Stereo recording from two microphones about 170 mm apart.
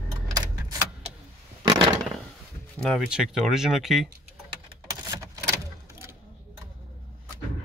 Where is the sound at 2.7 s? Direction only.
Centre (ahead or behind).